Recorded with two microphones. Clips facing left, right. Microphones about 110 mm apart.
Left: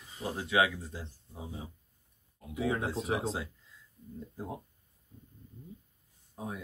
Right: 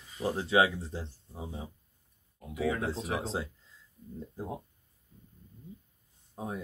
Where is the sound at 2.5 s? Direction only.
25° left (ahead or behind).